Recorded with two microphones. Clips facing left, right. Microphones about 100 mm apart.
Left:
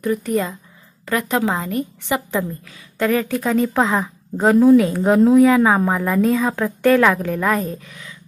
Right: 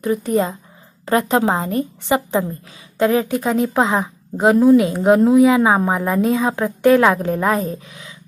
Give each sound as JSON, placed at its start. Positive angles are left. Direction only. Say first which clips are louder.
{"t": 0.0, "sound": "a woman's voice", "louder": "right 2 dB", "side_deg": -25}